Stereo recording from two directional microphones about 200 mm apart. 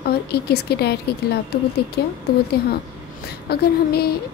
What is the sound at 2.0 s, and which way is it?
Speech, 55° left (ahead or behind).